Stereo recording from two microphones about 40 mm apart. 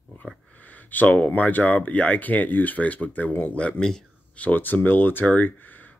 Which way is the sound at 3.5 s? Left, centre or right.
Left.